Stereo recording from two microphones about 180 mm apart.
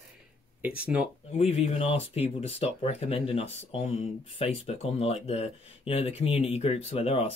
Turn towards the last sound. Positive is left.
turn(degrees=30)  # may be behind; listen again after turning